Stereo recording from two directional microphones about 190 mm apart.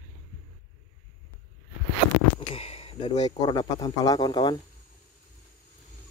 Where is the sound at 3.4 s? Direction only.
20° left (ahead or behind).